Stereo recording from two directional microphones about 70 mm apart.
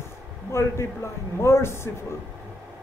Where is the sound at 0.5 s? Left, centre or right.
Left.